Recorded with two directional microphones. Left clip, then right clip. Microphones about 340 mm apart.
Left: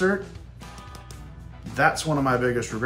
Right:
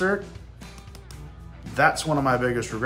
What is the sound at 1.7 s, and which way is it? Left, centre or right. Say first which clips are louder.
Speech: right 1 dB; centre.